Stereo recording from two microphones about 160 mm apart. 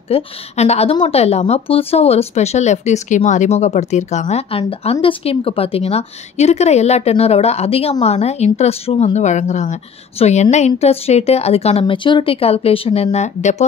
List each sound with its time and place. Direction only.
0.1 s a woman's voice: 40° left (ahead or behind)